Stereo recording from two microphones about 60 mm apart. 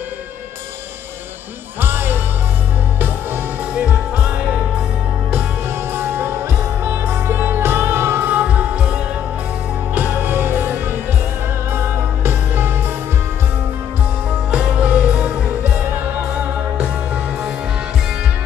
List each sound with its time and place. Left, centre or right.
1.8 s music: right
3.7 s music: right
5.9 s music: right; by 9.0 s centre
9.9 s music: right
14.5 s music: right
16.7 s music: centre